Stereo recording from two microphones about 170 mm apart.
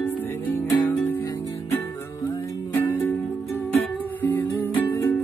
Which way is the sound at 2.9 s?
15° left (ahead or behind).